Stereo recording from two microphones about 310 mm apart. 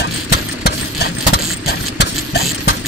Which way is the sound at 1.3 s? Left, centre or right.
Left.